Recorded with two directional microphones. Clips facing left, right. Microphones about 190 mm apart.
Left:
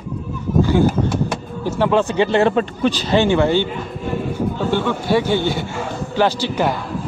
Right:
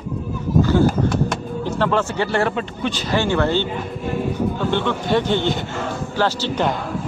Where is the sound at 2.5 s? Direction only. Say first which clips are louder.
Left 6 dB; 40° left (ahead or behind).